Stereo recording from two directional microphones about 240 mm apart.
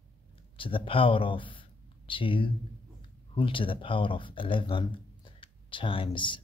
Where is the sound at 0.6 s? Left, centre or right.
Left.